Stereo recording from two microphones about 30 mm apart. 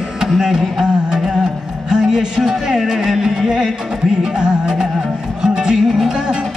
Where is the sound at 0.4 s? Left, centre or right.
Centre.